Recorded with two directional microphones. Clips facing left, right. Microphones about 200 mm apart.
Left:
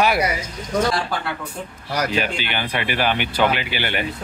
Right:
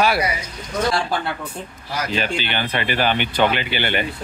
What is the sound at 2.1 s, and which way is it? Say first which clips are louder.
Speech: even; 10° left (ahead or behind).